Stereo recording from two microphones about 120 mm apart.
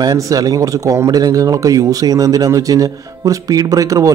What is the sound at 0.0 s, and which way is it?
A man's voice, 30° right (ahead or behind).